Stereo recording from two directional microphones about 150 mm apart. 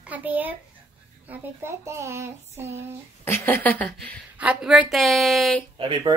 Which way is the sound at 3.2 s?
15° left (ahead or behind).